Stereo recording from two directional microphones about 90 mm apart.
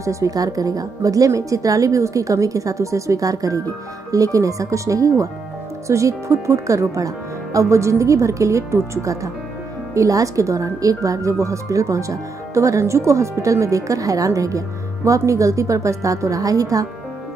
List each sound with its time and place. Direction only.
0.0 s speech: 35° right (ahead or behind)